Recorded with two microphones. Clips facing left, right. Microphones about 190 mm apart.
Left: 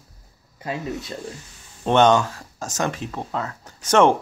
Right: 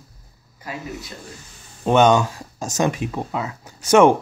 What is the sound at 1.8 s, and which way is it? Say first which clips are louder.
Speech: right 1 dB; 10° right (ahead or behind).